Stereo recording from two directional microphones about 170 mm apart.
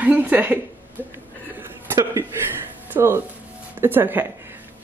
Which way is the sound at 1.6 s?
15° right (ahead or behind).